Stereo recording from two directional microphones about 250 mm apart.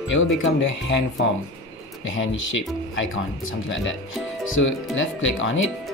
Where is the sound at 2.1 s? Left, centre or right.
Left.